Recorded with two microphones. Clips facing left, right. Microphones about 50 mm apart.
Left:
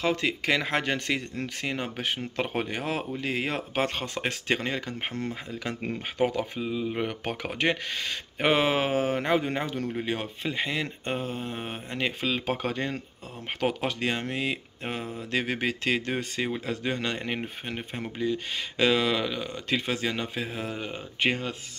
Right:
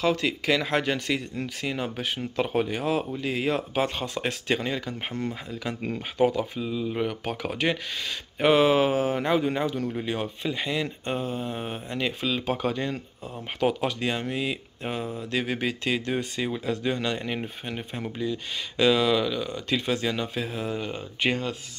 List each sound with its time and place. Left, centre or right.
0.0 s speech: left
6.2 s speech: left
9.9 s speech: left